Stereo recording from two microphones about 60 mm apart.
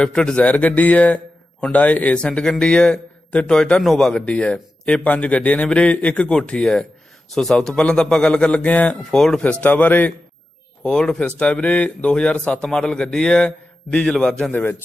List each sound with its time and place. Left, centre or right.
0.0 s speech: centre
0.4 s a man's voice: left
2.1 s speech: centre
9.1 s speech: centre
9.4 s a man's voice: left
10.8 s a man's voice: centre
14.5 s a man's voice: left